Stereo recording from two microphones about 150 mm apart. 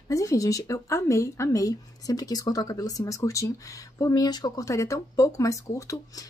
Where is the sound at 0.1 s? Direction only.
20° left (ahead or behind).